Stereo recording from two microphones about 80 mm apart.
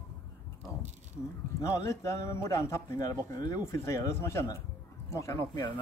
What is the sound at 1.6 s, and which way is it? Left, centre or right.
A man's voice, left.